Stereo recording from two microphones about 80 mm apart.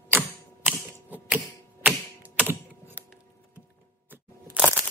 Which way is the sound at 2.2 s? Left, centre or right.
Right.